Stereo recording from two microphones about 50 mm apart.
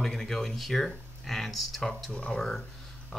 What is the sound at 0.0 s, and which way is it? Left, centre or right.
Speech, centre.